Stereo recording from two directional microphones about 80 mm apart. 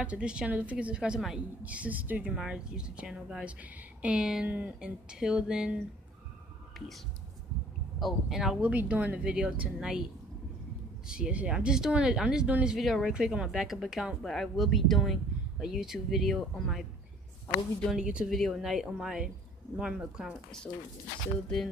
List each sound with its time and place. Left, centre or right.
0.0 s speech: centre
8.0 s speech: centre
11.1 s speech: centre
12.7 s speech: centre
17.8 s speech: centre